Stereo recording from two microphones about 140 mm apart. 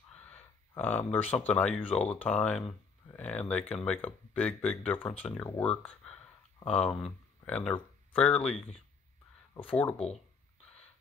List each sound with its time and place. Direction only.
0.1 s speech: 10° left (ahead or behind)
9.6 s speech: 10° left (ahead or behind)